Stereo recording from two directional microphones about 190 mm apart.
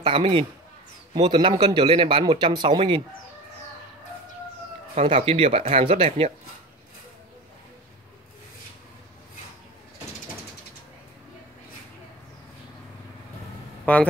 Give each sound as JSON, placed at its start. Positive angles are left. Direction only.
{"t": 0.0, "sound": "speech", "side_deg": -30}
{"t": 4.9, "sound": "speech", "side_deg": -30}
{"t": 13.9, "sound": "speech", "side_deg": 10}